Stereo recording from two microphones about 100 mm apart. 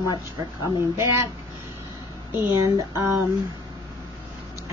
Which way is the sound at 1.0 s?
30° right (ahead or behind).